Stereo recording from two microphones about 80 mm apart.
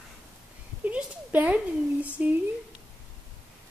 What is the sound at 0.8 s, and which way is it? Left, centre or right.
A woman's voice, centre.